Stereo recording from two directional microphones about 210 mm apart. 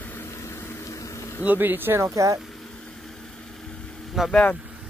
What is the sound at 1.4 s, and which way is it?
Speech, 10° right (ahead or behind).